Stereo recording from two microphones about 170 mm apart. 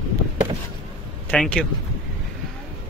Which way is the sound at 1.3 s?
5° left (ahead or behind).